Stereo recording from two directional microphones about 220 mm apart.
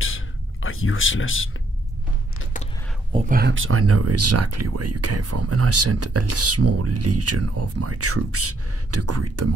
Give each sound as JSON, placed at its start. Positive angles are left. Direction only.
{"t": 0.0, "sound": "a sound", "side_deg": 65}
{"t": 3.3, "sound": "speech", "side_deg": -45}
{"t": 3.5, "sound": "speech", "side_deg": -70}